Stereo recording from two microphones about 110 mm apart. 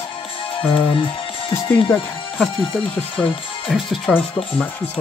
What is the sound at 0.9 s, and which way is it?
Music, 50° left (ahead or behind).